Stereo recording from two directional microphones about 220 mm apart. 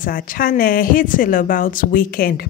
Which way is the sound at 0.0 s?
40° left (ahead or behind).